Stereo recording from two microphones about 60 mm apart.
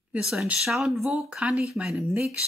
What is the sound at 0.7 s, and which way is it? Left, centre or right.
Speech, centre.